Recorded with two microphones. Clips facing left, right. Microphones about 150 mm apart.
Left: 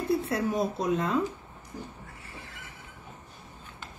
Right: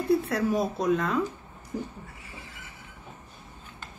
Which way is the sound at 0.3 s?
25° left (ahead or behind).